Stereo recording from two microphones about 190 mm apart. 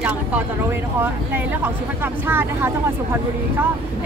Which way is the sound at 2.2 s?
10° right (ahead or behind).